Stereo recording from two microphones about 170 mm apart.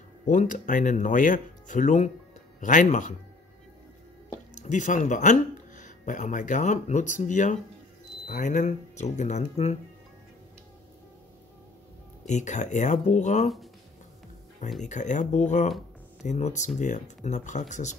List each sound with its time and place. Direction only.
0.3 s speech: 50° left (ahead or behind)
4.6 s speech: 45° left (ahead or behind)
12.3 s speech: 45° left (ahead or behind)
14.8 s speech: 45° left (ahead or behind)